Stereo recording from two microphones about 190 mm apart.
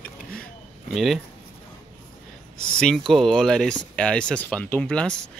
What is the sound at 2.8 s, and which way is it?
Speech, 5° left (ahead or behind).